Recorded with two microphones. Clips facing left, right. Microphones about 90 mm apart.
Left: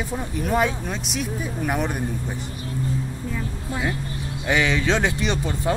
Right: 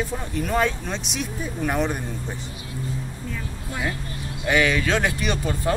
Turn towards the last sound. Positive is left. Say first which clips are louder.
# left 1 dB
turn(degrees=20)  # may be behind; listen again after turning